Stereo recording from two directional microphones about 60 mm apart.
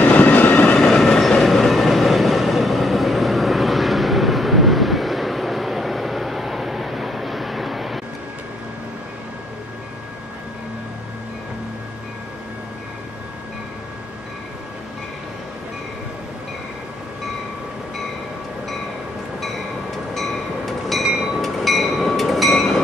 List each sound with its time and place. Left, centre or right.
0.0 s train: left
0.7 s train: centre
20.2 s train: centre